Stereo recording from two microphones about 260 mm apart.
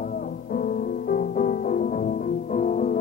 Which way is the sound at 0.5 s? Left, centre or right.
Left.